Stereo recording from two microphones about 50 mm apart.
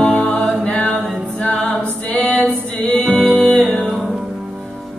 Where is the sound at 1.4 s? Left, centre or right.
Centre.